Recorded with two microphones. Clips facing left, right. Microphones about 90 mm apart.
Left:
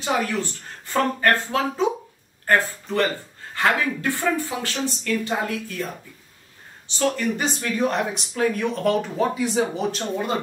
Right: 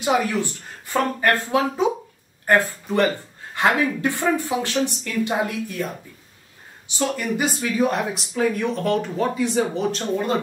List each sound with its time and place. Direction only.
0.0 s speech: 15° right (ahead or behind)
7.0 s speech: 10° right (ahead or behind)